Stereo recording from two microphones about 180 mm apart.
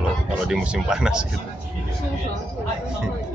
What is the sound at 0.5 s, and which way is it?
Speech, 5° right (ahead or behind).